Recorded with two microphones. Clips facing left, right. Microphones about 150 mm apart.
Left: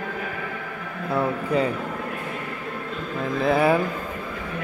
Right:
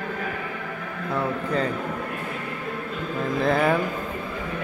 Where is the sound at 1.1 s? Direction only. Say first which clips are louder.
Left 3 dB; 10° left (ahead or behind).